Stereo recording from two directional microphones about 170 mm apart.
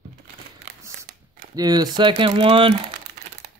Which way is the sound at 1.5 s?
25° right (ahead or behind).